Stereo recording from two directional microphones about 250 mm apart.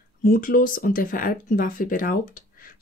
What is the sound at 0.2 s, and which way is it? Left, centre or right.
Speech, left.